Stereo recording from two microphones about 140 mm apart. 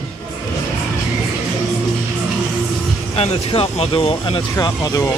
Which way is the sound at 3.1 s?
45° left (ahead or behind).